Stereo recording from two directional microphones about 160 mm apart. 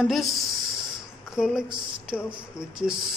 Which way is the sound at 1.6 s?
30° right (ahead or behind).